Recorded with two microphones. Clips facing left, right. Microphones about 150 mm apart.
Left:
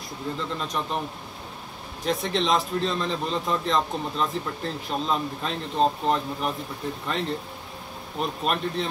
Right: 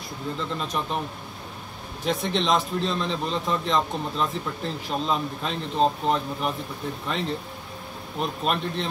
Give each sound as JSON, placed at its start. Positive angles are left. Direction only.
{"t": 0.4, "sound": "a man's voice", "side_deg": 0}
{"t": 2.0, "sound": "a man's voice", "side_deg": 0}